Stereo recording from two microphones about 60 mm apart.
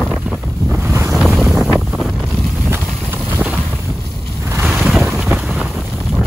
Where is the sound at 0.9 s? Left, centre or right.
Right.